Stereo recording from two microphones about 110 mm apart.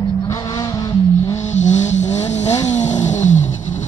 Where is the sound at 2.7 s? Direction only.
90° left.